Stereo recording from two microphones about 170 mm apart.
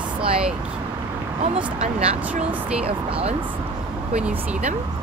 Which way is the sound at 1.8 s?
35° right (ahead or behind).